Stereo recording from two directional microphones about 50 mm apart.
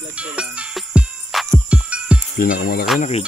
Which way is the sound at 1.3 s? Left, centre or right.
Centre.